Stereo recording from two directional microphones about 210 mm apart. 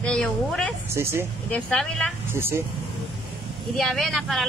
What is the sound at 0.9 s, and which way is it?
Speech, 10° right (ahead or behind).